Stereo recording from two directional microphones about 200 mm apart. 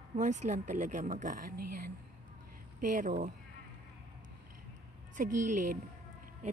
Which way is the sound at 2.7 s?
40° right (ahead or behind).